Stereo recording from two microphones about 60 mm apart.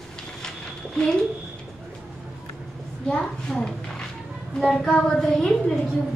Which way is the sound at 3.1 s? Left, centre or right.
Centre.